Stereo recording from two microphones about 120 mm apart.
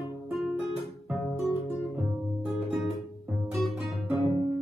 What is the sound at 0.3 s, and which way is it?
Guitar, centre (ahead or behind).